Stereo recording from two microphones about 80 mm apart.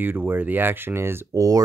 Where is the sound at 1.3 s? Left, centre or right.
Right.